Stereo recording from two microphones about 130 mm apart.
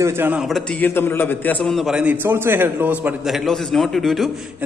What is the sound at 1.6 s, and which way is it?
A man's voice, centre (ahead or behind).